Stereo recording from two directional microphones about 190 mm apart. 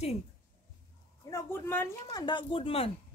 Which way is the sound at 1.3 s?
10° left (ahead or behind).